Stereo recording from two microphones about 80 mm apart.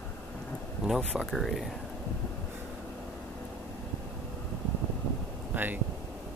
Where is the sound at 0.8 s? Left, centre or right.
Centre.